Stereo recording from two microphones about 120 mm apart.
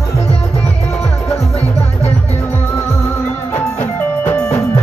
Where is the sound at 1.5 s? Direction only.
60° left (ahead or behind).